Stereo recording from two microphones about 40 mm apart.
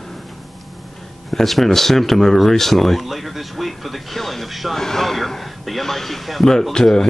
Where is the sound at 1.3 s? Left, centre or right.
Centre.